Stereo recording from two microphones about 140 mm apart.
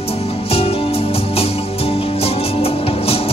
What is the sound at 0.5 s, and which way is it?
Music, 45° left (ahead or behind).